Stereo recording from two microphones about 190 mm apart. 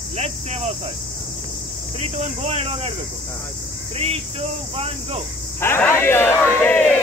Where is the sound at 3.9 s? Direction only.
30° right (ahead or behind).